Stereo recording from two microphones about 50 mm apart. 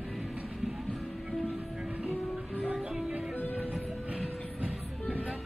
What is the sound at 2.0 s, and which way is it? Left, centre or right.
Music, right.